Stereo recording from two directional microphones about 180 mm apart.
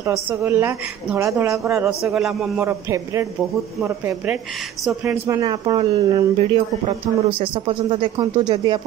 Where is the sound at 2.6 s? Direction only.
15° right (ahead or behind).